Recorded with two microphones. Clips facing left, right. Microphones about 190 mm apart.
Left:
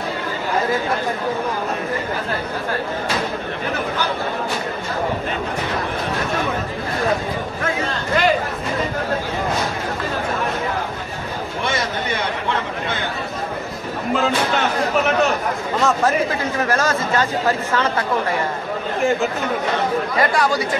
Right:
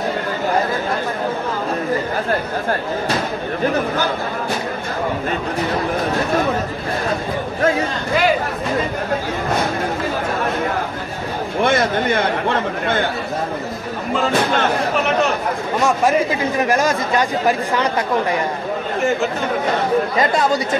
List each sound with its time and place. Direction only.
11.6 s a man's voice: 55° right (ahead or behind)
15.8 s speech: 15° right (ahead or behind)
20.2 s speech: 25° right (ahead or behind)